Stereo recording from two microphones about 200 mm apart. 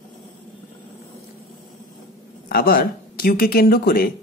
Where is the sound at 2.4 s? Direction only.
50° left (ahead or behind).